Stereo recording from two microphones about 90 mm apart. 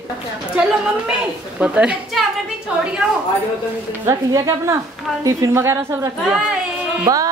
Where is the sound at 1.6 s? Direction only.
15° right (ahead or behind).